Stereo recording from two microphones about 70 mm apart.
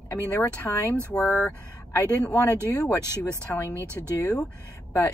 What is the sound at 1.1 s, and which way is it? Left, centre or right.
Speech, centre.